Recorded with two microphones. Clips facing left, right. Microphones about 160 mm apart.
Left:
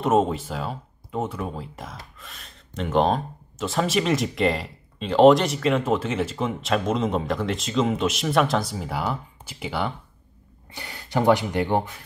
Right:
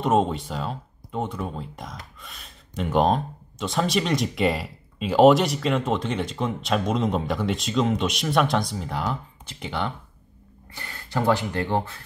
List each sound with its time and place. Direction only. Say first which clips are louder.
0.0 s speech: left 1 dB; centre (ahead or behind)
10.7 s speech: left 3 dB; 15° left (ahead or behind)